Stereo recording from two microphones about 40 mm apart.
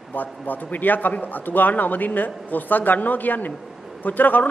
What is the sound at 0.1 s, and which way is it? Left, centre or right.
A man's voice, left.